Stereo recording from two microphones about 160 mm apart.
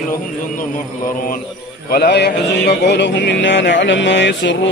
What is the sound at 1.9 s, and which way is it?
Music, 85° left.